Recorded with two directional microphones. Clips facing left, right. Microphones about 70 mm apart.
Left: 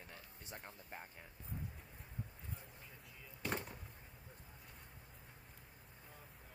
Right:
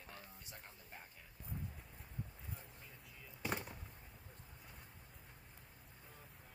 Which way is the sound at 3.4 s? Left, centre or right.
Centre.